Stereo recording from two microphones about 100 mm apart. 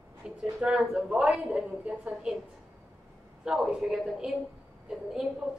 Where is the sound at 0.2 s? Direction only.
10° right (ahead or behind).